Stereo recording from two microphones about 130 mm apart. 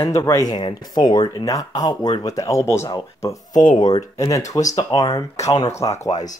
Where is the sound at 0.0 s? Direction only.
25° left (ahead or behind).